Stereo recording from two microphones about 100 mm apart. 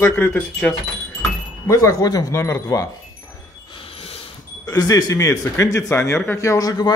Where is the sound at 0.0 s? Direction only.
20° left (ahead or behind).